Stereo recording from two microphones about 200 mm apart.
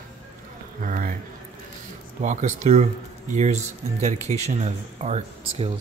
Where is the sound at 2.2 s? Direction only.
40° right (ahead or behind).